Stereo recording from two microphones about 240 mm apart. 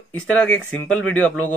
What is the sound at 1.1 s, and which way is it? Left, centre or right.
Speech, centre.